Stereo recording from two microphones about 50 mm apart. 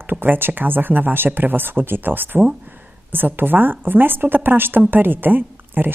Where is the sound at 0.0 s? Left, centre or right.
Right.